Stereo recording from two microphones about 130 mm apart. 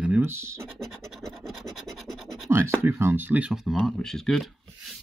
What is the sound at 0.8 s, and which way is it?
Scratch, centre (ahead or behind).